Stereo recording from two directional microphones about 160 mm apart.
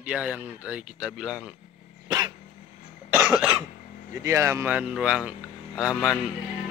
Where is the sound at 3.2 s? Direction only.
5° right (ahead or behind).